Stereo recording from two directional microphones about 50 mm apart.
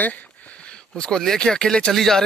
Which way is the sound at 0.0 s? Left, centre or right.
Left.